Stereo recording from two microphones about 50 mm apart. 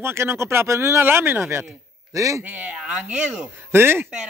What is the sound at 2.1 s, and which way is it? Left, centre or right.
Speech, right.